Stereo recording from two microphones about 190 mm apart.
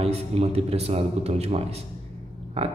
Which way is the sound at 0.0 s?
30° right (ahead or behind).